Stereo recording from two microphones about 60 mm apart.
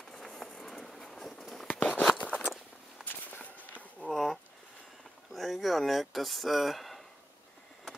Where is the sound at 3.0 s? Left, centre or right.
Left.